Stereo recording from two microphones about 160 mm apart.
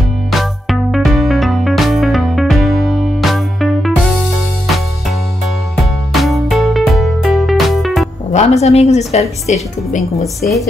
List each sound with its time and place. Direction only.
0.3 s music: centre (ahead or behind)
6.1 s music: centre (ahead or behind)
8.3 s speech: 45° left (ahead or behind)